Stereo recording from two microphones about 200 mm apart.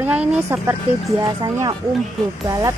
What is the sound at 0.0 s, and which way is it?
A woman's voice, 5° right (ahead or behind).